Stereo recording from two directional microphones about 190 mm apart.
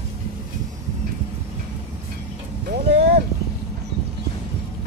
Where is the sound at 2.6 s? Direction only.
50° right (ahead or behind).